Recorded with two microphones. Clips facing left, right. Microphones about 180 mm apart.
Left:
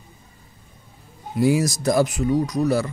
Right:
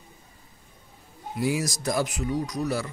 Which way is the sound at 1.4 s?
40° left (ahead or behind).